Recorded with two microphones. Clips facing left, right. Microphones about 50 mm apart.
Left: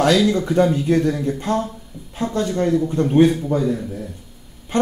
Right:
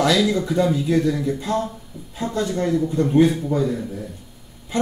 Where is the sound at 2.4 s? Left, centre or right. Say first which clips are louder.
Left 2 dB; left.